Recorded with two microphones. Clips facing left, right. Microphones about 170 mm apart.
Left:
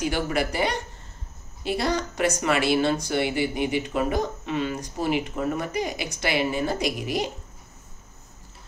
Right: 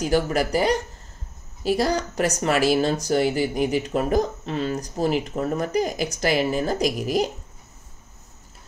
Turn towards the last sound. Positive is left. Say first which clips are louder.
# right 4 dB
turn(degrees=-40)  # may be behind; listen again after turning